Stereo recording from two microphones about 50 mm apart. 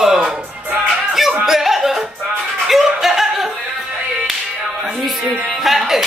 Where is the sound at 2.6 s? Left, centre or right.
Centre.